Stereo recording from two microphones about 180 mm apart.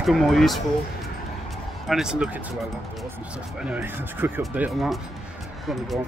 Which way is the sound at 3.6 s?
10° right (ahead or behind).